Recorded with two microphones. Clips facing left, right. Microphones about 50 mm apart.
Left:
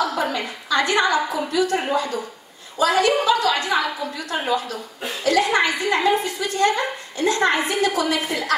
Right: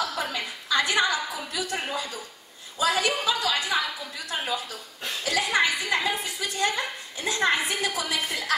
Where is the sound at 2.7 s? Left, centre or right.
Centre.